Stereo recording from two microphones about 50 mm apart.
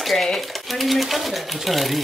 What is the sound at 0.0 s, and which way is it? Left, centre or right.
Speech, centre.